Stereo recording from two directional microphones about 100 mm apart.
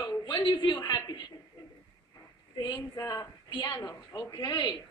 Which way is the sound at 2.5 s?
50° left (ahead or behind).